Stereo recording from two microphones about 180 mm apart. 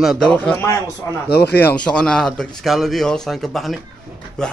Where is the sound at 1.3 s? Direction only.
65° left (ahead or behind).